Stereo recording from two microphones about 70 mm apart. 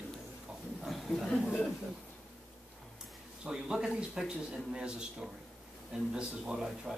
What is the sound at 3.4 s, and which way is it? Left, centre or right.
Speech, centre.